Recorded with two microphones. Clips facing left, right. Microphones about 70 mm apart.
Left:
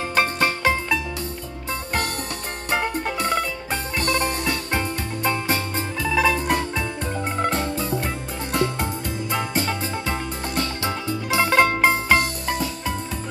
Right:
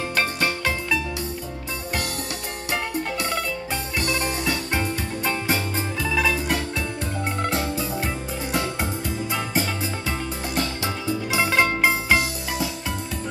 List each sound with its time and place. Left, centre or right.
0.1 s music: centre
4.0 s music: centre
6.0 s music: centre
9.3 s music: centre
10.5 s music: centre